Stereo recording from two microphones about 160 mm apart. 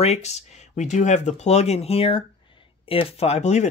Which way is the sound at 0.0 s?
45° left (ahead or behind).